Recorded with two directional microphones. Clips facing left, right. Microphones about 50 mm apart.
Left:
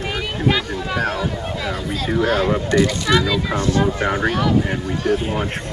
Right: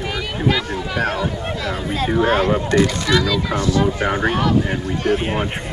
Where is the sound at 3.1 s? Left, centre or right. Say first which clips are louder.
Even; left.